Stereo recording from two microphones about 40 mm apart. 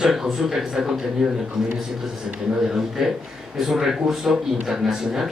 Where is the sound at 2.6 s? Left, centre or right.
Centre.